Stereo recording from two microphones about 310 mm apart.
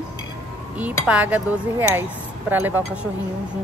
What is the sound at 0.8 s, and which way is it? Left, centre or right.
Speech, centre.